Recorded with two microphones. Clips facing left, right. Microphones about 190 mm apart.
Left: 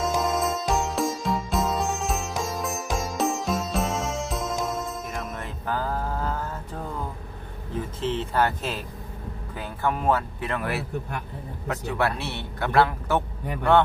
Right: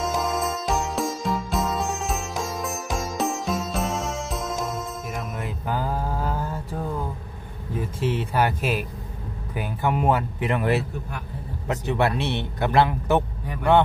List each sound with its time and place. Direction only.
0.0 s music: centre (ahead or behind)
5.7 s a sound: 15° right (ahead or behind)
9.6 s a man's voice: 15° right (ahead or behind)